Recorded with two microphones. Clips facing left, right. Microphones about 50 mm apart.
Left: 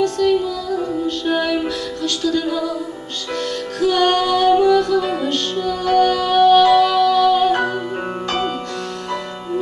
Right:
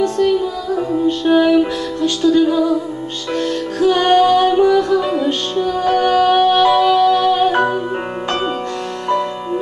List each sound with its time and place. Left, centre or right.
0.2 s music: right